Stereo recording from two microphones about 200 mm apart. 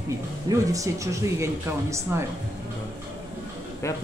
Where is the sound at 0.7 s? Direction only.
15° right (ahead or behind).